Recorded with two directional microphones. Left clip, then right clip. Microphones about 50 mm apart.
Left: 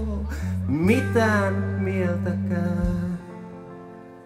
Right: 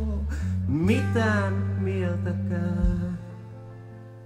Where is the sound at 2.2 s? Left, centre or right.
Centre.